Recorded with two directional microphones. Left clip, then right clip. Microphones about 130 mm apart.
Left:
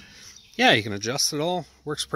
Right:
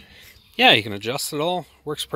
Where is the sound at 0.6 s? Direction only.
20° left (ahead or behind).